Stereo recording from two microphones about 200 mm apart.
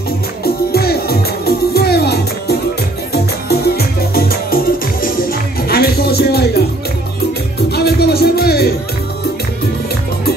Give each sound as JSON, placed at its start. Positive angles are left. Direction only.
{"t": 0.4, "sound": "music", "side_deg": 50}
{"t": 5.7, "sound": "music", "side_deg": 50}
{"t": 7.7, "sound": "music", "side_deg": 55}